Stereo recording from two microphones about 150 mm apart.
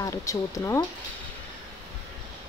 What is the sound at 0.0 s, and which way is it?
Speech, 20° left (ahead or behind).